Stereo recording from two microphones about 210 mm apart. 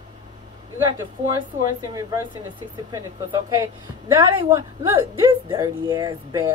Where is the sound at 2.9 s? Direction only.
15° right (ahead or behind).